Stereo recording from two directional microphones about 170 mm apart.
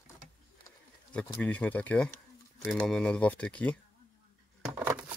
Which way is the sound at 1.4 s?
10° left (ahead or behind).